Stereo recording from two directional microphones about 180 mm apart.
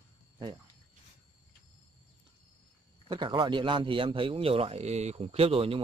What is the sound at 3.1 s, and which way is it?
Speech, 25° right (ahead or behind).